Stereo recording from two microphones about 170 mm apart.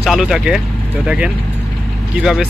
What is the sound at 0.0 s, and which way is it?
Speech, centre (ahead or behind).